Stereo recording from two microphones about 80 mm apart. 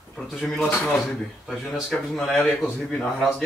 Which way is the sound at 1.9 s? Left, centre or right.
Centre.